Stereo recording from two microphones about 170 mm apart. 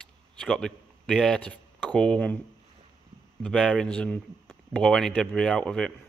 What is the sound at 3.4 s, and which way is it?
Speech, 5° left (ahead or behind).